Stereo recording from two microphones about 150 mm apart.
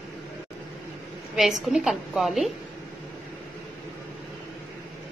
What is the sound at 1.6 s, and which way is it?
Speech, 5° right (ahead or behind).